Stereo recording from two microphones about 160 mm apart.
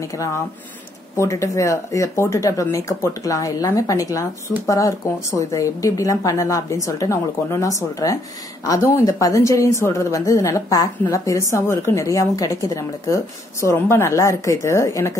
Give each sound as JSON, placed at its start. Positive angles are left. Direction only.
{"t": 1.1, "sound": "a woman's voice", "side_deg": 20}